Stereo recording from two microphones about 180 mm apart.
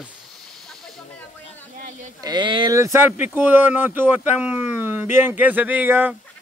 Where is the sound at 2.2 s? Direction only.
25° right (ahead or behind).